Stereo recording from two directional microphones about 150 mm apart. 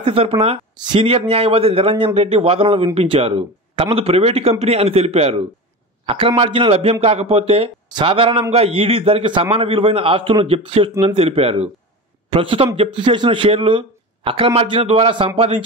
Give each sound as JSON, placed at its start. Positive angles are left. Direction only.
{"t": 0.0, "sound": "speech", "side_deg": -40}